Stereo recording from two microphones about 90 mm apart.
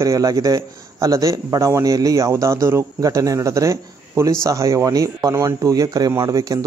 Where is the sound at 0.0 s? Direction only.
40° right (ahead or behind).